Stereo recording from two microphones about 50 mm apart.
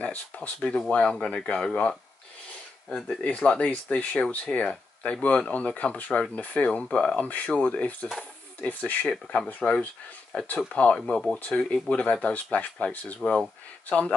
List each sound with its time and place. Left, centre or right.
0.0 s speech: left
2.9 s speech: centre
3.3 s speech: left
5.5 s speech: left
8.2 s stir: left
9.0 s speech: centre
11.0 s speech: centre
11.3 s speech: left